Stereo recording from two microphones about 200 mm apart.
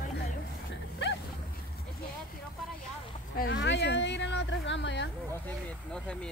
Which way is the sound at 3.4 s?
65° left (ahead or behind).